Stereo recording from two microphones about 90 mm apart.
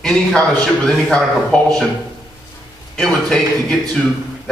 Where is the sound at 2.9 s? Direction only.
5° left (ahead or behind).